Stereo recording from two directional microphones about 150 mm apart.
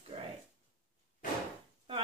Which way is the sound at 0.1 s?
50° right (ahead or behind).